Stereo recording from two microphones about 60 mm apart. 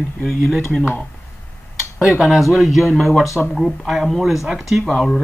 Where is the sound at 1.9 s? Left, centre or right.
Centre.